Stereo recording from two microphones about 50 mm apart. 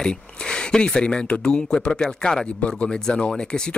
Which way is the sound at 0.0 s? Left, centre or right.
Centre.